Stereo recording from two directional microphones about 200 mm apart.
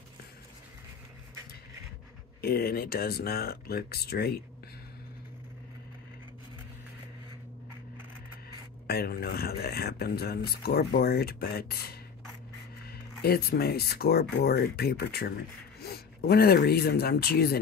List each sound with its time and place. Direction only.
2.4 s speech: 50° left (ahead or behind)
8.8 s speech: 50° left (ahead or behind)